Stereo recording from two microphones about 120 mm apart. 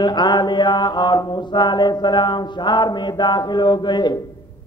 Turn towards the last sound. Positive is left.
turn(degrees=40)  # may be behind; listen again after turning